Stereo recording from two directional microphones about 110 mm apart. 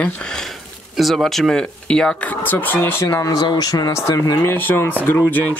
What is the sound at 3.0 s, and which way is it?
Speech, 30° left (ahead or behind).